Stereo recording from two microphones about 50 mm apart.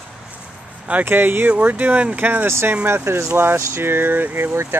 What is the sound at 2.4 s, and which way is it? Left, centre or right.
Speech, right.